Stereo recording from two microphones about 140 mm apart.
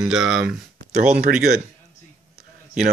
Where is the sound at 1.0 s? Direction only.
65° right (ahead or behind).